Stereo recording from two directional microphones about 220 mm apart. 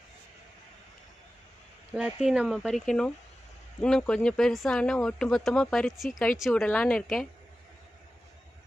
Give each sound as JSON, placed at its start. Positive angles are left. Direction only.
{"t": 2.0, "sound": "speech", "side_deg": -5}